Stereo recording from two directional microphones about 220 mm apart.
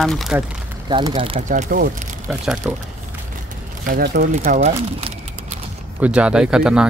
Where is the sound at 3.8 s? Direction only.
45° right (ahead or behind).